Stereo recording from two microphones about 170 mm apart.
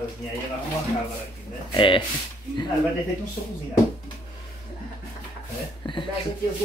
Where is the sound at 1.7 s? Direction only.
30° left (ahead or behind).